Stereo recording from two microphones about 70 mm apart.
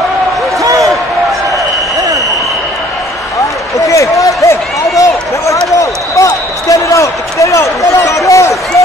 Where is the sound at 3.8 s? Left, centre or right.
Left.